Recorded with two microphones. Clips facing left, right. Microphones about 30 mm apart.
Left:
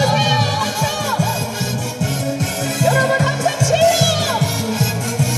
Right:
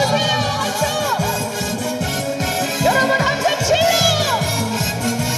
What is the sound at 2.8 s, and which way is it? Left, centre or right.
Music, centre.